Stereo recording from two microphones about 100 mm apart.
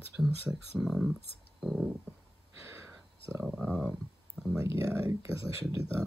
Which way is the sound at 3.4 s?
10° right (ahead or behind).